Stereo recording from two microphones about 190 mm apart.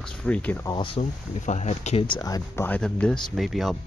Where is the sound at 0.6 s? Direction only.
25° left (ahead or behind).